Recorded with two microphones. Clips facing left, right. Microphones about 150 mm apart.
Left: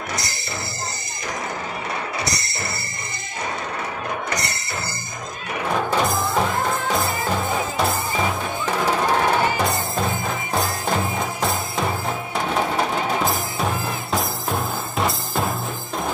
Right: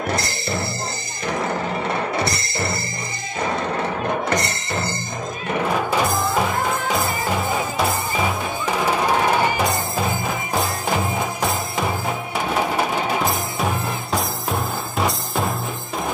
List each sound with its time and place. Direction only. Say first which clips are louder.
1.3 s music: right 6 dB; 50° right (ahead or behind)
3.4 s a sound: right 6 dB; 45° right (ahead or behind)
5.8 s music: right 1 dB; 5° right (ahead or behind)